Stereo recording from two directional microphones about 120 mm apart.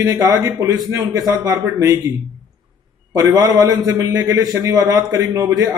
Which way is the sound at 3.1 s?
30° right (ahead or behind).